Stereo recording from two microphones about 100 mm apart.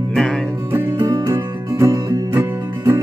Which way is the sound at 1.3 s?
30° right (ahead or behind).